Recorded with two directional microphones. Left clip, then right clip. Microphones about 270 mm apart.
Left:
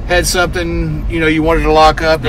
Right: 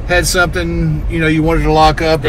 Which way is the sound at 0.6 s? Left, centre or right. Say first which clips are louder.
Even; left.